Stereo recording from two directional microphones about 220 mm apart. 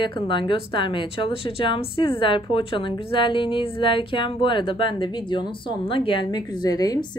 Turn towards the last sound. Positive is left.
turn(degrees=15)  # may be behind; listen again after turning